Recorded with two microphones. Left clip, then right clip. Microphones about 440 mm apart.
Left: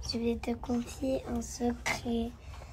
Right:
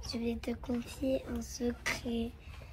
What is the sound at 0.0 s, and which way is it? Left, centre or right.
Speech, centre.